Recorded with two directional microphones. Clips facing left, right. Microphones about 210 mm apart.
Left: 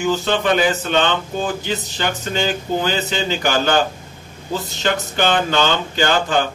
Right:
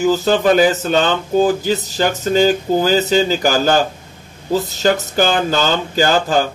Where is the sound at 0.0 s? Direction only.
40° right (ahead or behind).